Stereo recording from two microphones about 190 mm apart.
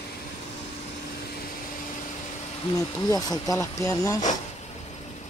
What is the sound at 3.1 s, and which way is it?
Speech, 20° left (ahead or behind).